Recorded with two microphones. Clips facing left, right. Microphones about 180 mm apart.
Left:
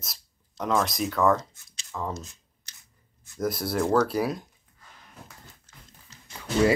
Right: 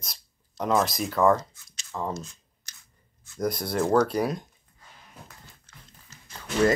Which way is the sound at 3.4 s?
5° left (ahead or behind).